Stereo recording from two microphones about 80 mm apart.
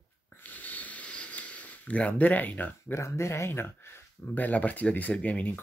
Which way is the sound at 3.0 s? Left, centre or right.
Left.